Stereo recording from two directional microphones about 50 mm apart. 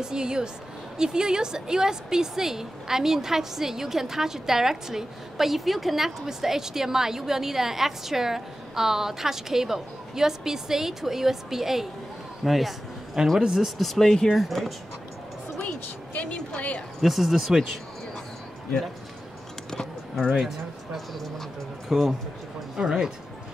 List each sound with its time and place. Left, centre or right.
0.0 s a woman's voice: centre
12.4 s a sound: centre
13.4 s a woman's voice: centre
13.7 s speech: centre
16.1 s a woman's voice: left
17.0 s speech: centre
20.3 s speech: centre
22.8 s a woman's voice: centre